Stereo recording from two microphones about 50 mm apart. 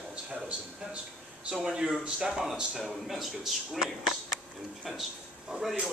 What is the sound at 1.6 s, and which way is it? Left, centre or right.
Speech, centre.